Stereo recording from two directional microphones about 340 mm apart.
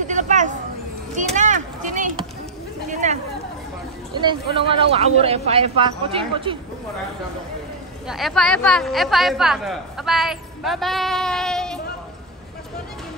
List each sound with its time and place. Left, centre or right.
0.0 s hubbub: right
1.1 s a sound: right
4.1 s speech: centre
8.1 s a woman's voice: centre